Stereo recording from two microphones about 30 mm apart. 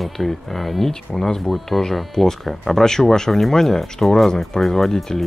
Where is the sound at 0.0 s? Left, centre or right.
Centre.